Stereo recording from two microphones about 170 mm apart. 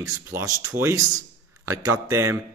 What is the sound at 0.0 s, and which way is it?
Speech, 15° right (ahead or behind).